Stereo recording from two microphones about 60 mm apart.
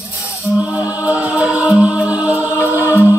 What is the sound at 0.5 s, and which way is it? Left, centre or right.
Music, right.